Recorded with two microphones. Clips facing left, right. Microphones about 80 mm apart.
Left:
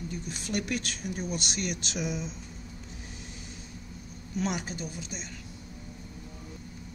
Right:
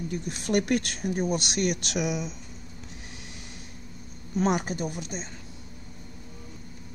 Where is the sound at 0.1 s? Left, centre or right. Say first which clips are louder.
Right 9 dB; right.